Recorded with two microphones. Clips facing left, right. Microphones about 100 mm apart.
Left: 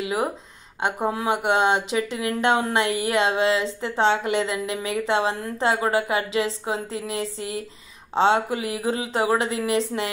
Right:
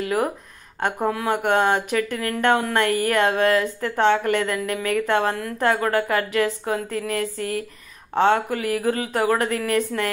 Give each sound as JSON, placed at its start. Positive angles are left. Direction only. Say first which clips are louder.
{"t": 0.0, "sound": "speech", "louder": "right 2 dB", "side_deg": 15}